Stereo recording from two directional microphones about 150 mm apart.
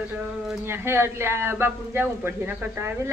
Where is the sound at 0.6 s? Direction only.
15° right (ahead or behind).